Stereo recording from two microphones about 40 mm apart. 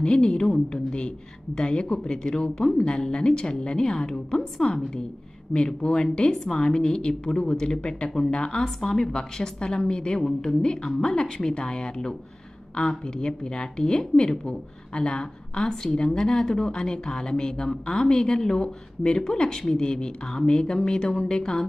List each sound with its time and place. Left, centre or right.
0.0 s a woman's voice: left
6.3 s a woman's voice: centre
8.6 s a woman's voice: centre
9.0 s a woman's voice: centre